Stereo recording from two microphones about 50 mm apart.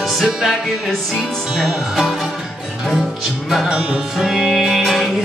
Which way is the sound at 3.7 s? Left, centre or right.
Right.